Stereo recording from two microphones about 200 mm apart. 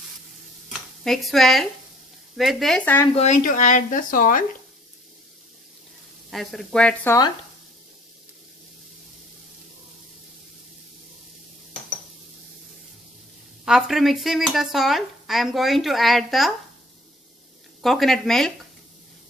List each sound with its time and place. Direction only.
1.0 s speech: centre (ahead or behind)
3.2 s speech: 40° left (ahead or behind)
6.3 s speech: centre (ahead or behind)
13.7 s speech: centre (ahead or behind)
17.8 s speech: centre (ahead or behind)